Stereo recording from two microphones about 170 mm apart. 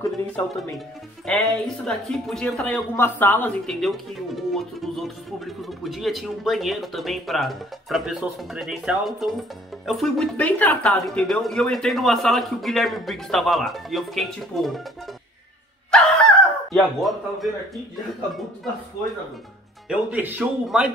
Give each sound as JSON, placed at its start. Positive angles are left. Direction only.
{"t": 1.2, "sound": "speech", "side_deg": 5}
{"t": 15.9, "sound": "a sound", "side_deg": 0}
{"t": 19.9, "sound": "speech", "side_deg": -10}